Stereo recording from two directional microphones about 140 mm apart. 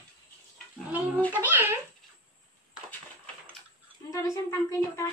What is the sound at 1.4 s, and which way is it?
Speech, 15° right (ahead or behind).